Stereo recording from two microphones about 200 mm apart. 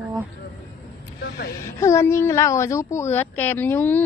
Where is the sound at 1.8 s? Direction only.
15° left (ahead or behind).